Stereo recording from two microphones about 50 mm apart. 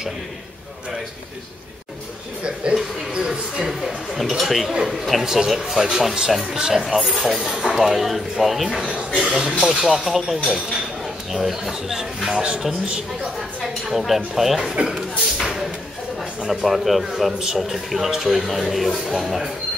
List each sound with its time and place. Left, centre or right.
2.4 s a man's voice: centre
8.8 s speech: right
9.3 s a man's voice: centre
16.4 s a man's voice: centre